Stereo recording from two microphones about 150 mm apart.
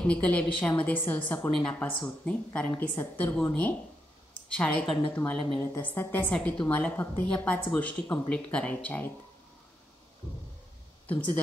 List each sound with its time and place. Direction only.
0.0 s a woman's voice: 10° left (ahead or behind)